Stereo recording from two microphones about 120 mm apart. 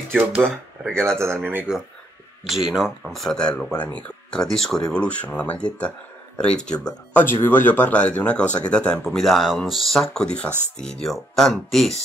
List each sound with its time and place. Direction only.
0.1 s speech: 15° right (ahead or behind)
2.4 s speech: 5° right (ahead or behind)